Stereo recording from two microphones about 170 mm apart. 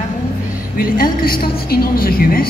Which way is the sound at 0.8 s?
60° left (ahead or behind).